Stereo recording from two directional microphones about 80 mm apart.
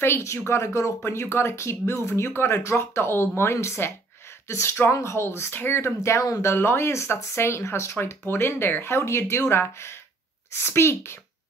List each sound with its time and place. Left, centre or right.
0.0 s speech: left
6.5 s speech: left